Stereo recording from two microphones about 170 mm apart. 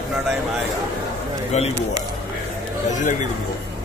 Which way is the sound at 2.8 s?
45° left (ahead or behind).